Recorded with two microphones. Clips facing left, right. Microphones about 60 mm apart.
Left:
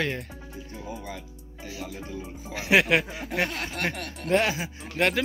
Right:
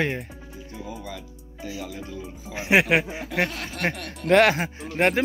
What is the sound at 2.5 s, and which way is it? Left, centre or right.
Speech, right.